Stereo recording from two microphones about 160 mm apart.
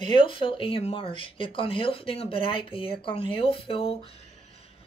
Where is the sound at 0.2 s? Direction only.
30° left (ahead or behind).